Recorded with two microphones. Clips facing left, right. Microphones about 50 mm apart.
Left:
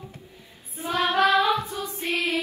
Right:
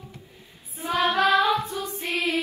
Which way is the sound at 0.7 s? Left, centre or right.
Right.